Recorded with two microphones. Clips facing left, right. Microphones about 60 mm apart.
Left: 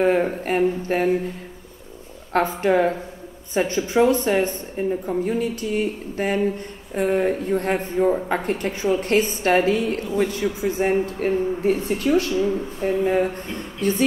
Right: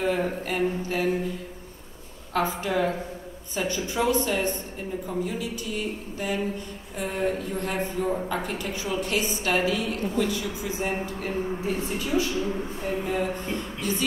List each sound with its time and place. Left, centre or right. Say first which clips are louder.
0.0 s speech: left 7 dB; left
2.3 s speech: left 7 dB; left
3.5 s a sound: left 8 dB; left
4.2 s speech: left 5 dB; left
12.4 s a sound: left 6 dB; left
13.7 s speech: left 11 dB; left